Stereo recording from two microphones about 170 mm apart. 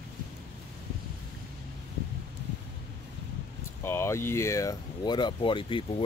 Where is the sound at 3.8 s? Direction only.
15° left (ahead or behind).